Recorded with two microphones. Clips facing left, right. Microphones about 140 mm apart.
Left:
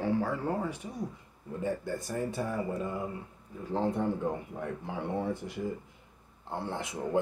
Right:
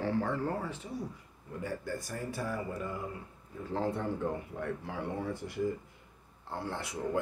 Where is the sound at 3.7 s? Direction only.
15° left (ahead or behind).